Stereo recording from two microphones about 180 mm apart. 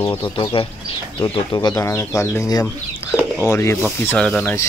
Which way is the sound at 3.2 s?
5° right (ahead or behind).